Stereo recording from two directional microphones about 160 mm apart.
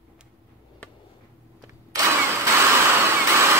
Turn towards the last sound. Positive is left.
turn(degrees=-15)  # may be behind; listen again after turning